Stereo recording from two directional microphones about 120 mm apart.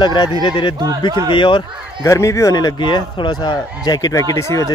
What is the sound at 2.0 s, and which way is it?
Speech, 25° left (ahead or behind).